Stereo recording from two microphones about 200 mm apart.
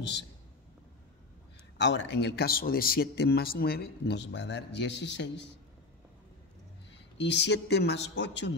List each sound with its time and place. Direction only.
1.8 s a man's voice: 60° left (ahead or behind)
7.2 s a man's voice: 60° left (ahead or behind)